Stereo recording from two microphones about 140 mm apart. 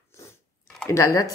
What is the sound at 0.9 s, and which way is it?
Speech, 25° left (ahead or behind).